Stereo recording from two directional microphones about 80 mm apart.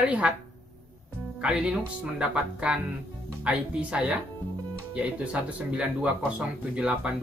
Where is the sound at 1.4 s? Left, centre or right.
Centre.